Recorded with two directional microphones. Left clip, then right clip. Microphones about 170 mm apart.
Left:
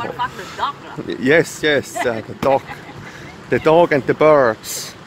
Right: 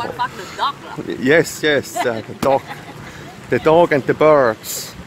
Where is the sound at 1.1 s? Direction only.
Centre (ahead or behind).